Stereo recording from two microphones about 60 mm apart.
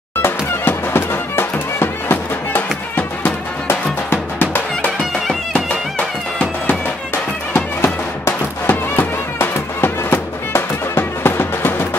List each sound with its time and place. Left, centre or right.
0.2 s music: left
3.6 s music: left
7.5 s music: left